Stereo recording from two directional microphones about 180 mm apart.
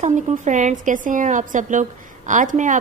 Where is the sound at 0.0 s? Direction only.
40° right (ahead or behind).